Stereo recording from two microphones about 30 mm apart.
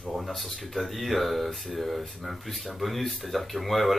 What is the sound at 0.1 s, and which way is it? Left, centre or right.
Speech, centre.